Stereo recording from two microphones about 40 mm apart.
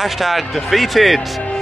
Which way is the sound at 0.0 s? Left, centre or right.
Centre.